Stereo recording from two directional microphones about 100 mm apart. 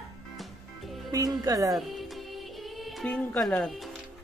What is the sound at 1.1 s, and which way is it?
Speech, 35° right (ahead or behind).